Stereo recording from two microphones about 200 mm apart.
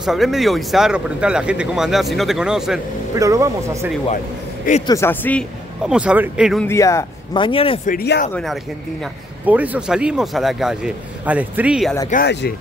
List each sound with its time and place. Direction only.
0.0 s speech: centre (ahead or behind)
3.2 s speech: 15° right (ahead or behind)
4.8 s speech: 15° left (ahead or behind)
5.9 s speech: 5° right (ahead or behind)
6.6 s speech: 15° left (ahead or behind)
7.9 s speech: 50° left (ahead or behind)
9.5 s speech: 10° right (ahead or behind)
12.1 s speech: 55° left (ahead or behind)